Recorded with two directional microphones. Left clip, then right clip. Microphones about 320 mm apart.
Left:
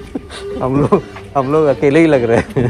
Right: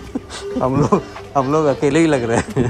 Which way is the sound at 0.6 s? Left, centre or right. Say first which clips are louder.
Left 3 dB; centre.